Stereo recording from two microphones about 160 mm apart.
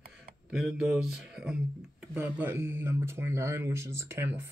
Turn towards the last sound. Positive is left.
turn(degrees=-15)  # may be behind; listen again after turning